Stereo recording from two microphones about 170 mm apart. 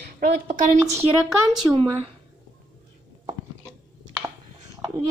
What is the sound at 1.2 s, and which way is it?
Speech, 5° right (ahead or behind).